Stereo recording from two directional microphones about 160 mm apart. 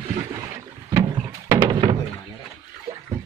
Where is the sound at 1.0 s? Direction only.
25° right (ahead or behind).